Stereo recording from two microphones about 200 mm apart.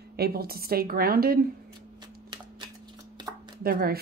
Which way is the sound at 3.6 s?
50° right (ahead or behind).